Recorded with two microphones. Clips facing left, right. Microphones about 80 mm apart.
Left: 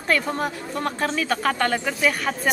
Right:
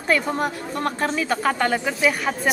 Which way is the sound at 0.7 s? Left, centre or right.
Right.